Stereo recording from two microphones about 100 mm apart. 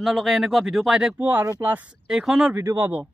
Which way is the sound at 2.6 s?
20° right (ahead or behind).